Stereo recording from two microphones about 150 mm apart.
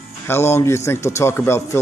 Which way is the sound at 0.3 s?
15° left (ahead or behind).